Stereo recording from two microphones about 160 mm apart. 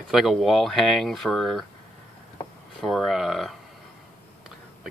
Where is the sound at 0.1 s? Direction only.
Centre (ahead or behind).